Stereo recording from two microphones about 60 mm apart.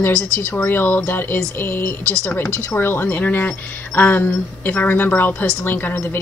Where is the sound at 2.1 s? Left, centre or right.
Left.